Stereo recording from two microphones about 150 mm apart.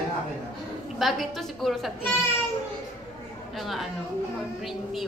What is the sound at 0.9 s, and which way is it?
Speech, centre (ahead or behind).